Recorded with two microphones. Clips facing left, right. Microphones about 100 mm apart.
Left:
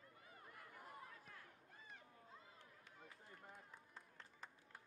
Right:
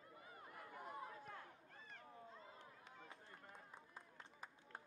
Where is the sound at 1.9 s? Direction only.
5° left (ahead or behind).